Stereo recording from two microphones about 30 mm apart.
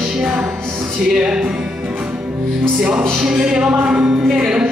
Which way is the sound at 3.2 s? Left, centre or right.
Right.